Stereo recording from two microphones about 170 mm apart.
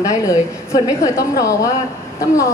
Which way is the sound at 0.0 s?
20° left (ahead or behind).